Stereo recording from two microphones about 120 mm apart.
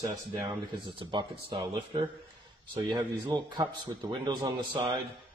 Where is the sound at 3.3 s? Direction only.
35° right (ahead or behind).